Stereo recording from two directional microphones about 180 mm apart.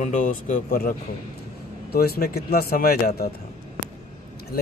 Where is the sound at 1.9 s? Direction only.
60° left (ahead or behind).